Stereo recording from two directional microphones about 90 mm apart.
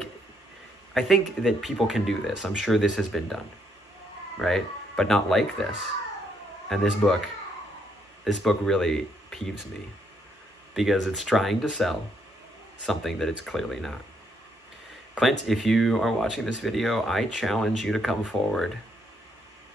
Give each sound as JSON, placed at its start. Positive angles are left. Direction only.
{"t": 0.9, "sound": "speech", "side_deg": 0}
{"t": 4.4, "sound": "speech", "side_deg": 5}
{"t": 6.7, "sound": "speech", "side_deg": 5}
{"t": 8.2, "sound": "speech", "side_deg": 0}
{"t": 10.7, "sound": "speech", "side_deg": 0}
{"t": 15.1, "sound": "speech", "side_deg": 0}